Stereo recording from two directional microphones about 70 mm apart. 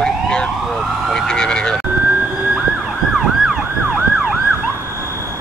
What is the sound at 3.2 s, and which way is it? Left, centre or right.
Emergency vehicle, centre.